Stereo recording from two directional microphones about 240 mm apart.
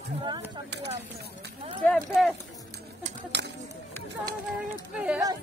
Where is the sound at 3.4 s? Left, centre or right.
Right.